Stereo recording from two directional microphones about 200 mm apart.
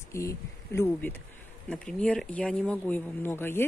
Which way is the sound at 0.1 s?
15° left (ahead or behind).